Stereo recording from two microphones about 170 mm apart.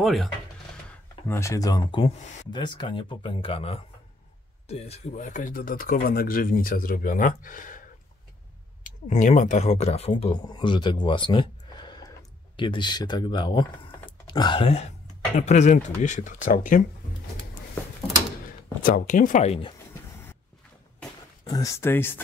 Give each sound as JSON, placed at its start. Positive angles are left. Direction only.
{"t": 0.0, "sound": "speech", "side_deg": 0}
{"t": 0.8, "sound": "speech", "side_deg": 15}
{"t": 8.8, "sound": "speech", "side_deg": 45}
{"t": 18.8, "sound": "speech", "side_deg": 55}
{"t": 21.5, "sound": "speech", "side_deg": 20}